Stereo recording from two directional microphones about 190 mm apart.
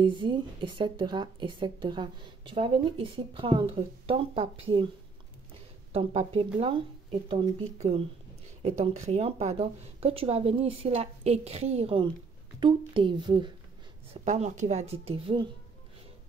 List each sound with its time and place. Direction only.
0.0 s speech: 25° right (ahead or behind)
5.9 s speech: 30° right (ahead or behind)
14.1 s speech: 35° right (ahead or behind)